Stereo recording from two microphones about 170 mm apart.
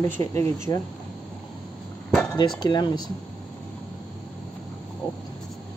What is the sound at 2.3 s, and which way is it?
Speech, 25° left (ahead or behind).